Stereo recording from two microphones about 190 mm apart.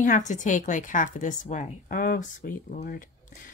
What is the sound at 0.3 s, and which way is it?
A woman's voice, 40° left (ahead or behind).